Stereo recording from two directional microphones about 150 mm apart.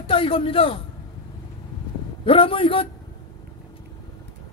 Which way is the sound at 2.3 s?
35° left (ahead or behind).